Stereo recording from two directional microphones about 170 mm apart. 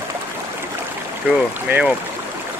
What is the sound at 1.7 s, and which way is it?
Speech, 10° right (ahead or behind).